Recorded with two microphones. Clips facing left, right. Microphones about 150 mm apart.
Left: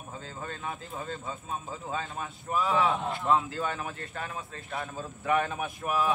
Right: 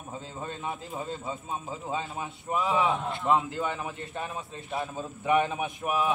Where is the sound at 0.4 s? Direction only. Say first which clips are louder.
Right 2 dB; 25° right (ahead or behind).